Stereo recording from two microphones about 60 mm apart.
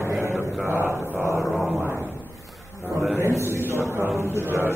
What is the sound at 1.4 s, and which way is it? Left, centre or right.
Speech, centre.